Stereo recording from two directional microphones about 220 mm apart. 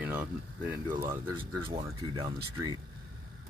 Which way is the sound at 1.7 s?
25° right (ahead or behind).